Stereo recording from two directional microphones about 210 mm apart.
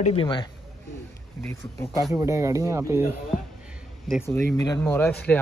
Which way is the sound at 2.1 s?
15° right (ahead or behind).